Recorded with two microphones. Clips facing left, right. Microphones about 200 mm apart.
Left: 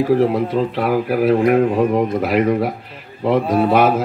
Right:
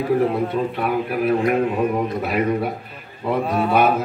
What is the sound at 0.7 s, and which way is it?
Speech, 90° left.